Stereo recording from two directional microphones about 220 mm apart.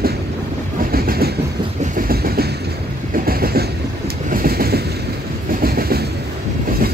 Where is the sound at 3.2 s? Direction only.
45° right (ahead or behind).